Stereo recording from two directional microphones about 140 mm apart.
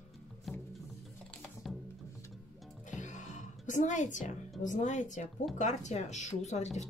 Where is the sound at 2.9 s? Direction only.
60° left (ahead or behind).